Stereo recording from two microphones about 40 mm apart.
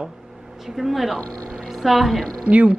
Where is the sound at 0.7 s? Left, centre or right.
Centre.